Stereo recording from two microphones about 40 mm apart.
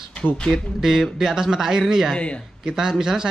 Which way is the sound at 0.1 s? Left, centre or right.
Left.